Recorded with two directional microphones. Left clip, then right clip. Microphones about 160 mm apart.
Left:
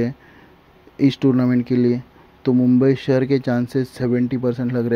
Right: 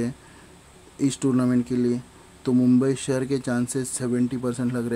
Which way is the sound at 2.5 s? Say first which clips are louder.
Left 2 dB; centre (ahead or behind).